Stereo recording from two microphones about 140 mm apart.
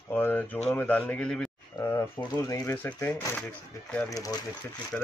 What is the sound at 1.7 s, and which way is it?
Speech, 15° left (ahead or behind).